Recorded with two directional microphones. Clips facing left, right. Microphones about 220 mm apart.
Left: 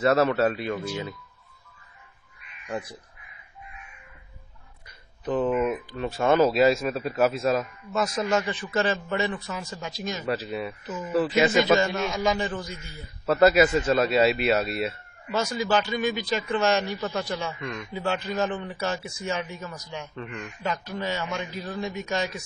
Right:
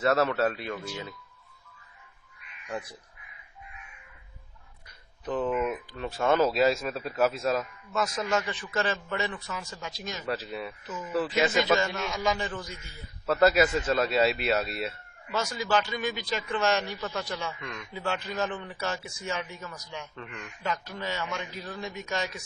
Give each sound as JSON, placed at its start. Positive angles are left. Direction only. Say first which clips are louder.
{"t": 0.0, "sound": "speech", "louder": "left 4 dB", "side_deg": 10}
{"t": 5.2, "sound": "speech", "louder": "left 4 dB", "side_deg": 15}
{"t": 7.9, "sound": "a man's voice", "louder": "left 4 dB", "side_deg": 30}
{"t": 10.2, "sound": "speech", "louder": "left 4 dB", "side_deg": 10}
{"t": 11.8, "sound": "a man's voice", "louder": "left 4 dB", "side_deg": 30}
{"t": 13.2, "sound": "speech", "louder": "left 4 dB", "side_deg": 10}
{"t": 15.3, "sound": "a man's voice", "louder": "left 3 dB", "side_deg": 25}
{"t": 17.6, "sound": "speech", "louder": "left 6 dB", "side_deg": 5}
{"t": 17.9, "sound": "a man's voice", "louder": "left 4 dB", "side_deg": 25}